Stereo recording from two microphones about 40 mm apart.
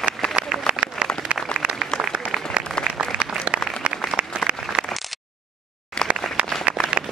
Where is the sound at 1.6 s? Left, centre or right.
Right.